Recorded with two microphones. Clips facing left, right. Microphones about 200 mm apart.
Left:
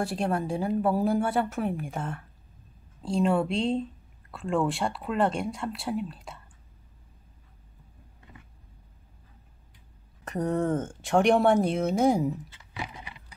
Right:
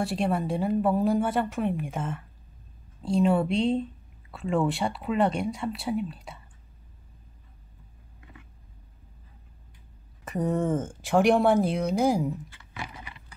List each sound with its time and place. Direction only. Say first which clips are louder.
0.0 s speech: right 1 dB; centre (ahead or behind)
10.2 s speech: even; centre (ahead or behind)
12.4 s speech: left 2 dB; 20° left (ahead or behind)